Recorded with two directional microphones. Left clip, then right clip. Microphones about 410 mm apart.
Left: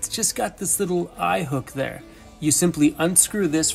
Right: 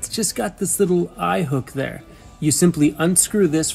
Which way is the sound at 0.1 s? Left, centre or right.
Centre.